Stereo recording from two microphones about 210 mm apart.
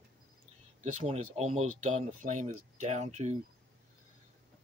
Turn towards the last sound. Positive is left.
turn(degrees=-35)  # may be behind; listen again after turning